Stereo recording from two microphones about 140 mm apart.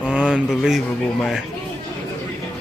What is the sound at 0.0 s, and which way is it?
Speech, 5° right (ahead or behind).